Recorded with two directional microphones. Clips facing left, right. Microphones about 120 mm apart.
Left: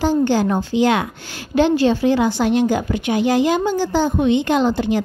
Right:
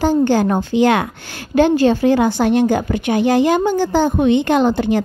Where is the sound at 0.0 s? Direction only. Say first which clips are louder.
Right 2 dB; 50° right (ahead or behind).